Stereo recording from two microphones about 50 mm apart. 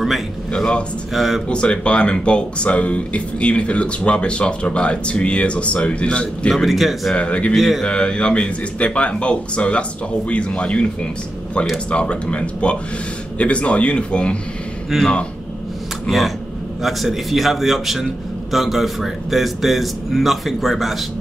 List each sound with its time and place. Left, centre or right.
0.5 s speech: centre
1.1 s a man's voice: centre
1.5 s speech: centre
6.5 s a man's voice: centre
7.2 s speech: left
7.5 s a man's voice: centre
7.8 s speech: centre
14.9 s a man's voice: centre
16.8 s a man's voice: centre